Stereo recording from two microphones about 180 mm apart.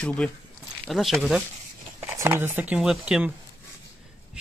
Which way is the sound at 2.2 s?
15° right (ahead or behind).